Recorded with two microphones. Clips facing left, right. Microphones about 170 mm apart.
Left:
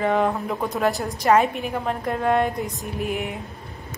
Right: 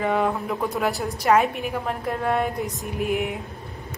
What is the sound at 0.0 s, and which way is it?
A woman's voice, centre (ahead or behind).